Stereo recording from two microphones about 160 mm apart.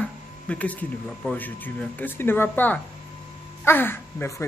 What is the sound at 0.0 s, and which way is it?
A man's voice, 10° left (ahead or behind).